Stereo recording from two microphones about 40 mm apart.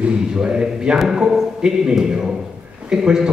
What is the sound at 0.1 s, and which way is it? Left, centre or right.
A man's voice, centre.